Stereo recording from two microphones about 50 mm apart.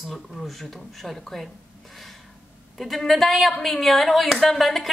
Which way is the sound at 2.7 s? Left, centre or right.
Centre.